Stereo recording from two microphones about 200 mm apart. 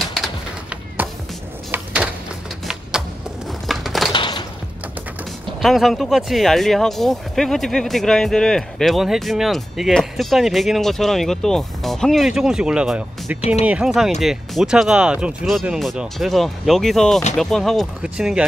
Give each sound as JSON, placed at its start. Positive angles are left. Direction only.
{"t": 0.1, "sound": "bird", "side_deg": -5}
{"t": 3.6, "sound": "crushing", "side_deg": 0}
{"t": 4.1, "sound": "a sound", "side_deg": 25}
{"t": 5.6, "sound": "speech", "side_deg": 0}